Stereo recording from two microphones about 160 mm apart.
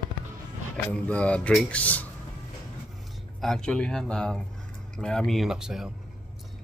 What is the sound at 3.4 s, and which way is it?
Speech, 5° left (ahead or behind).